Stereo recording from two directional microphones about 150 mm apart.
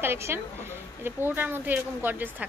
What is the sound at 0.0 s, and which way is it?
A woman's voice, 15° right (ahead or behind).